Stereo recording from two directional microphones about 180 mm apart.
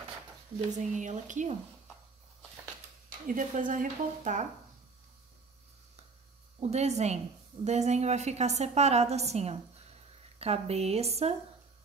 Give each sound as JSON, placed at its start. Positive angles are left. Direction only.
{"t": 0.7, "sound": "speech", "side_deg": -40}
{"t": 3.1, "sound": "speech", "side_deg": -45}
{"t": 6.6, "sound": "a woman's voice", "side_deg": -40}